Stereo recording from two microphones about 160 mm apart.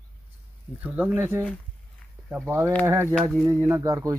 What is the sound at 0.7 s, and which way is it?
Speech, 10° right (ahead or behind).